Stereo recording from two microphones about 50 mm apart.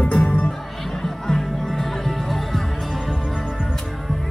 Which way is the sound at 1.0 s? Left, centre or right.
Centre.